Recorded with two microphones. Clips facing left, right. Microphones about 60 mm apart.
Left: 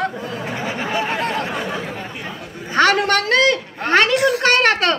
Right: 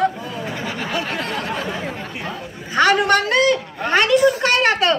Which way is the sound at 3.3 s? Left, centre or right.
Left.